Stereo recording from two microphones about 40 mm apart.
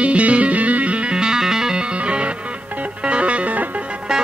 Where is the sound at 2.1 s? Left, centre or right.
Right.